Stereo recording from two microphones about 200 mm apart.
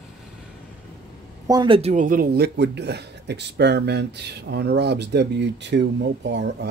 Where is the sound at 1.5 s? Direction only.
25° right (ahead or behind).